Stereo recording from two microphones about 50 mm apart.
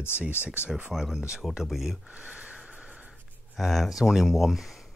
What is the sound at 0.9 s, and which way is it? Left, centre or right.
Speech, centre.